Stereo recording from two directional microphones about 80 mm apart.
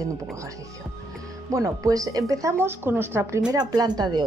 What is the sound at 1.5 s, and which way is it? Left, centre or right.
Speech, right.